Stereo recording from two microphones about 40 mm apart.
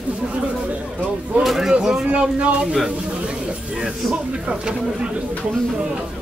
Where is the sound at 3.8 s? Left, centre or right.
Right.